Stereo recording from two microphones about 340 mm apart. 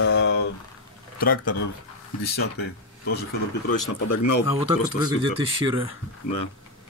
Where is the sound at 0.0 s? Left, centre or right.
Left.